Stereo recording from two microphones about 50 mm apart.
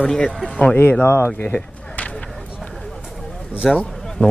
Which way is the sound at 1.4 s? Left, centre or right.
Left.